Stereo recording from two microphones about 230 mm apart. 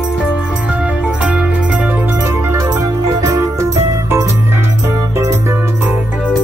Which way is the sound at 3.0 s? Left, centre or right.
Centre.